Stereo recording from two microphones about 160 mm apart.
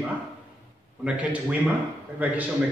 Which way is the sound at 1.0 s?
10° right (ahead or behind).